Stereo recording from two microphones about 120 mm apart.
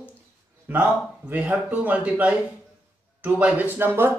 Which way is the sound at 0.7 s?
15° right (ahead or behind).